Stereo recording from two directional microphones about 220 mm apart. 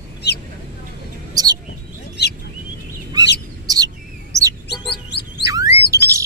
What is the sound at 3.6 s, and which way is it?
Bird, 15° right (ahead or behind).